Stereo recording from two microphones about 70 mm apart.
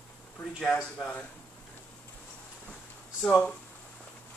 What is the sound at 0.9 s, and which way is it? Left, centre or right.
Speech, centre.